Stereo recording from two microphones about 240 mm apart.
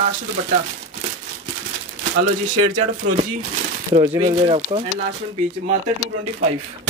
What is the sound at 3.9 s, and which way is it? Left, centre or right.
Speech, right.